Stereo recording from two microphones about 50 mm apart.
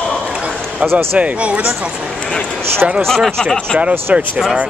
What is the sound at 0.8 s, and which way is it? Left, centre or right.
Speech, right.